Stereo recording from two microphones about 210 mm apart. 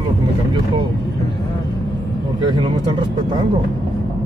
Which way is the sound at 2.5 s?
20° right (ahead or behind).